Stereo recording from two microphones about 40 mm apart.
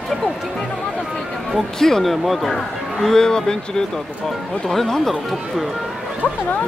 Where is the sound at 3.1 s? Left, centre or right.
Centre.